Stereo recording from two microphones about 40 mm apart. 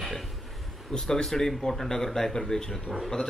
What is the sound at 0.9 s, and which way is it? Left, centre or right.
A man's voice, centre.